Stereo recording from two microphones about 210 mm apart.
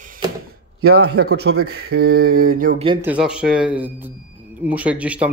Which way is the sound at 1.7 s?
50° right (ahead or behind).